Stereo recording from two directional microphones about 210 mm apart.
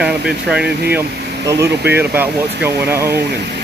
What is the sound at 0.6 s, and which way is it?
Speech, 50° right (ahead or behind).